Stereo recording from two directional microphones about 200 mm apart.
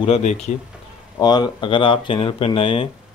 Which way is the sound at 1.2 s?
20° left (ahead or behind).